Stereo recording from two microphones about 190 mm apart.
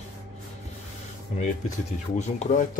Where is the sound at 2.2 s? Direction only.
40° left (ahead or behind).